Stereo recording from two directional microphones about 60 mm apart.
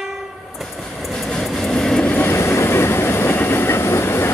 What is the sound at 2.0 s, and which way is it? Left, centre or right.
Vehicle, left.